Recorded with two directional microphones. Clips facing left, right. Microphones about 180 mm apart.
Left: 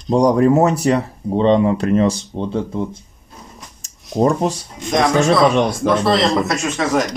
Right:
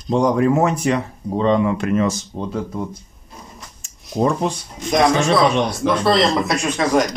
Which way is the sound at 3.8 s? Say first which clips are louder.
Left 3 dB; 40° left (ahead or behind).